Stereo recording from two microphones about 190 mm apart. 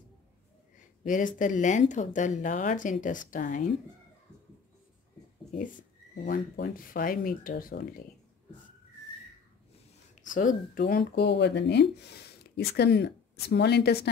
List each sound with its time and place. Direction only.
1.0 s speech: 45° left (ahead or behind)
5.5 s speech: 45° left (ahead or behind)
10.3 s speech: 45° left (ahead or behind)